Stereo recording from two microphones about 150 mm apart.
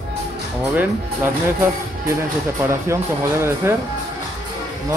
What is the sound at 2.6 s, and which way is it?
Speech, 20° right (ahead or behind).